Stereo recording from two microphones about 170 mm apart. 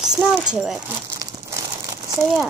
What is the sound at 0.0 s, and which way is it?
Speech, 5° right (ahead or behind).